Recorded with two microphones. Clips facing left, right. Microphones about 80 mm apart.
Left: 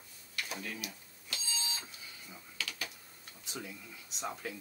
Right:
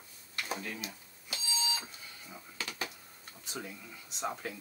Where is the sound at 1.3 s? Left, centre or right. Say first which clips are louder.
Right 5 dB; centre.